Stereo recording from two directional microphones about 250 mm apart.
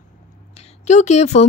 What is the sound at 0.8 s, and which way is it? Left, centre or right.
Speech, left.